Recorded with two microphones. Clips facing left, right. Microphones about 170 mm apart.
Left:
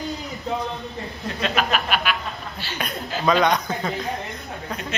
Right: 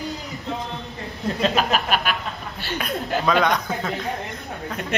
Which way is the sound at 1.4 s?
35° right (ahead or behind).